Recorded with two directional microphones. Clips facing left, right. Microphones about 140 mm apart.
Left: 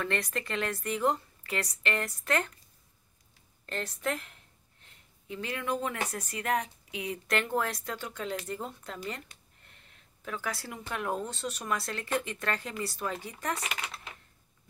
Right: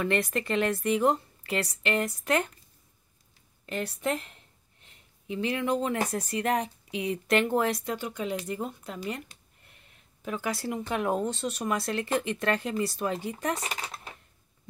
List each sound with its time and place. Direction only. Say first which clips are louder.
0.0 s a woman's voice: right 5 dB; 15° right (ahead or behind)
3.6 s a woman's voice: right 3 dB; 10° right (ahead or behind)
5.3 s a woman's voice: right 6 dB; 25° right (ahead or behind)
10.2 s a woman's voice: right 5 dB; 15° right (ahead or behind)
13.7 s typewriter: right 2 dB; 35° right (ahead or behind)